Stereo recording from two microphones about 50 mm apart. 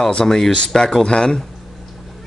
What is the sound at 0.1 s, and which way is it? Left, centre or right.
Speech, centre.